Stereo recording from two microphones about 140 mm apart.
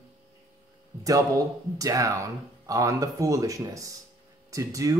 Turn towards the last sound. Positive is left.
turn(degrees=-25)  # may be behind; listen again after turning